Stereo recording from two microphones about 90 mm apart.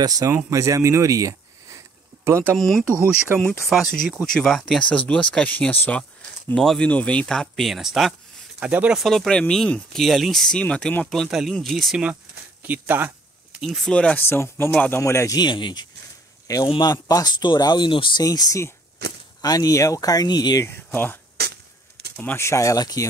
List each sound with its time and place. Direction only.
0.0 s speech: 40° right (ahead or behind)
2.5 s speech: centre (ahead or behind)
8.5 s speech: 15° right (ahead or behind)
9.0 s speech: 5° left (ahead or behind)
11.2 s speech: 5° right (ahead or behind)
12.6 s a sound: 20° right (ahead or behind)
13.6 s speech: centre (ahead or behind)
13.9 s speech: 10° left (ahead or behind)
14.2 s speech: 30° left (ahead or behind)
15.3 s speech: 60° left (ahead or behind)
16.5 s a man's voice: 45° left (ahead or behind); by 18.2 s 65° left (ahead or behind)
18.2 s speech: 45° left (ahead or behind)
20.6 s speech: 25° left (ahead or behind)
22.4 s speech: 35° left (ahead or behind)